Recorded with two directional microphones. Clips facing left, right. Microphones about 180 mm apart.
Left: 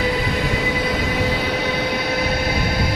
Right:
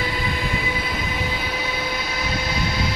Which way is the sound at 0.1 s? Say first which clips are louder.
Left 5 dB; 80° left.